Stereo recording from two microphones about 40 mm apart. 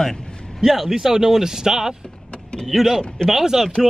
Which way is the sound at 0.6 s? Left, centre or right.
Centre.